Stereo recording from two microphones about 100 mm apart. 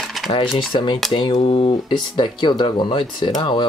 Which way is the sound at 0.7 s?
50° left (ahead or behind).